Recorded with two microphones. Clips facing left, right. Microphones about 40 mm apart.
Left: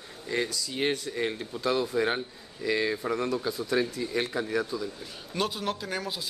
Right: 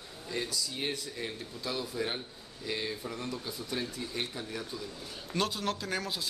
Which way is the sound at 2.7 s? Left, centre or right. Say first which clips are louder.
Left 9 dB; left.